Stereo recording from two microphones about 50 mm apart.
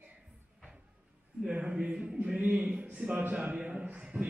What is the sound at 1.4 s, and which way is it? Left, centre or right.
A man's voice, right.